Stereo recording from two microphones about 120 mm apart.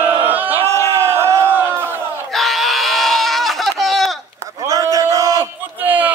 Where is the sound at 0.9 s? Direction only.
20° right (ahead or behind).